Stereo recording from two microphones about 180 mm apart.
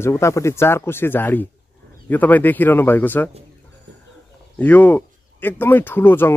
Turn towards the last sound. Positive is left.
turn(degrees=10)  # may be behind; listen again after turning